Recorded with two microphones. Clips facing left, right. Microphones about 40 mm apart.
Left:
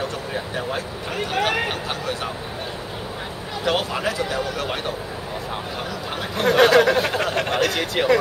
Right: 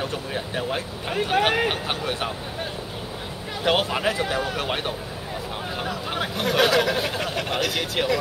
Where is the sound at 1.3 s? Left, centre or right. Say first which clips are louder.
Right 1 dB; right.